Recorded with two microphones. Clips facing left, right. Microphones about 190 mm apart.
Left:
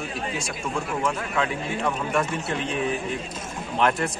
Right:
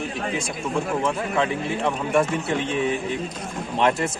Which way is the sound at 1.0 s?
25° right (ahead or behind).